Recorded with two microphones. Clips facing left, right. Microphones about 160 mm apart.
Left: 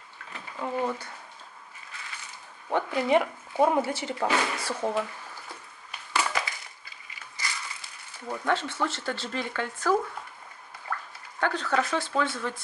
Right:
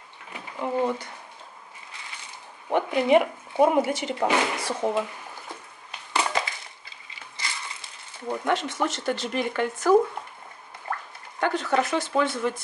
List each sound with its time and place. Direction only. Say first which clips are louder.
0.3 s a sound: right 4 dB; 20° right (ahead or behind)
2.7 s speech: right 4 dB; 20° right (ahead or behind)
6.1 s crushing: right 3 dB; 25° right (ahead or behind)
7.1 s a sound: even; 25° right (ahead or behind)
8.3 s speech: right 2 dB; 20° right (ahead or behind)
11.3 s speech: right 3 dB; 15° right (ahead or behind)